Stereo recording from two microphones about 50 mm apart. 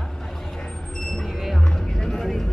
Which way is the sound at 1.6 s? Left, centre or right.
Centre.